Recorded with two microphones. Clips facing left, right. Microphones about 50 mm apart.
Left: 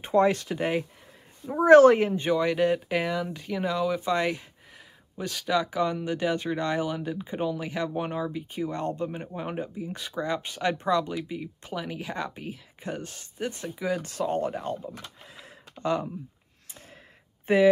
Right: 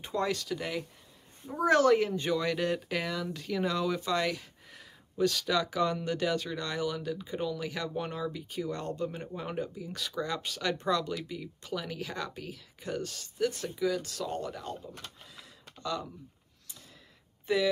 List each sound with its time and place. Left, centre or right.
0.0 s speech: left; by 4.0 s centre
4.0 s speech: left
17.5 s speech: left